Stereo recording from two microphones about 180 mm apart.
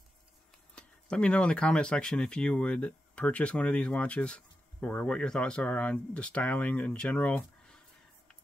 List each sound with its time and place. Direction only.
0.7 s speech: 5° left (ahead or behind)